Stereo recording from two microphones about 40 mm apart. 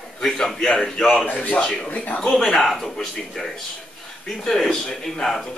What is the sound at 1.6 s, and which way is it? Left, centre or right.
Speech, left.